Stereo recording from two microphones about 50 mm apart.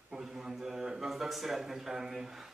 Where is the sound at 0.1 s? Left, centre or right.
Centre.